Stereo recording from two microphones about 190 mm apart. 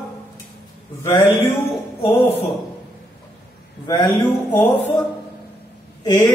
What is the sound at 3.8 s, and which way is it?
Speech, 20° left (ahead or behind).